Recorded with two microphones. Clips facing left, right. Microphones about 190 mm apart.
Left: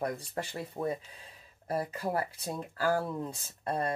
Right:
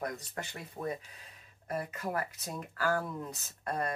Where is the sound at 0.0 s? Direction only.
30° left (ahead or behind).